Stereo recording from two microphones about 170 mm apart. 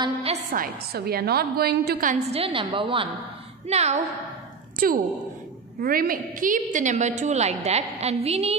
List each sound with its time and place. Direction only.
0.0 s a woman's voice: 35° right (ahead or behind)
0.5 s a woman's voice: 60° right (ahead or behind)
2.3 s a woman's voice: 30° right (ahead or behind)
4.8 s a woman's voice: 55° right (ahead or behind); by 8.5 s 35° right (ahead or behind)